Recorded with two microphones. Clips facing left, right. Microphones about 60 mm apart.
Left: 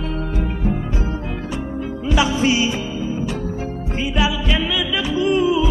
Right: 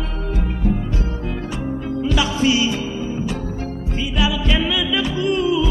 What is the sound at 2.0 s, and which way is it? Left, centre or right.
Music, centre.